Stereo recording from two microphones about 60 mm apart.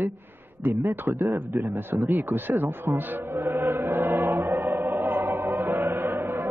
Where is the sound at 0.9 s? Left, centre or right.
Right.